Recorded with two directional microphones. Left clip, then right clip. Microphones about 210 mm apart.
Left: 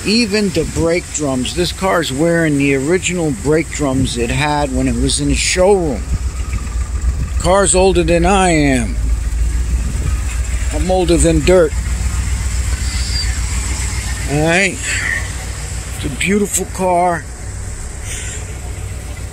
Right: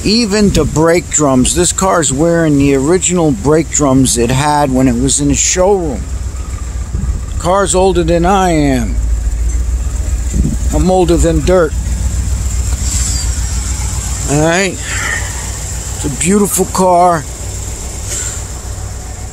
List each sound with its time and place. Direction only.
0.0 s speech: 5° right (ahead or behind); by 1.6 s 20° right (ahead or behind)
1.6 s speech: 10° right (ahead or behind); by 5.9 s 5° left (ahead or behind)
7.4 s speech: 5° left (ahead or behind)
11.2 s speech: 5° left (ahead or behind)
14.3 s speech: 5° right (ahead or behind)
16.2 s speech: 15° right (ahead or behind)